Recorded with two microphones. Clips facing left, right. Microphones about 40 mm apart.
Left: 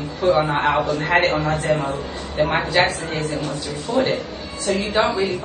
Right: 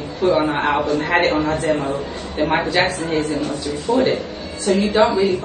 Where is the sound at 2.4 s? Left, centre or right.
Right.